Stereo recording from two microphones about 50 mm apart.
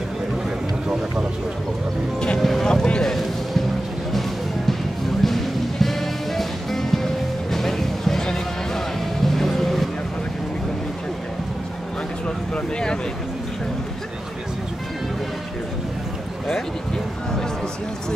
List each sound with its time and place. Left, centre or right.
2.1 s a sound: centre
2.4 s boat: centre
2.7 s boat: centre
4.1 s music: centre
12.5 s vehicle: centre